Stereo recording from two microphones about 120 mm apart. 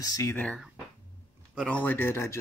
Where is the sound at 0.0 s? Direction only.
25° left (ahead or behind).